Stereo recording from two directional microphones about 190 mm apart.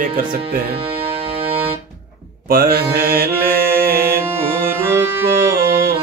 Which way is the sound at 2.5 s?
50° right (ahead or behind).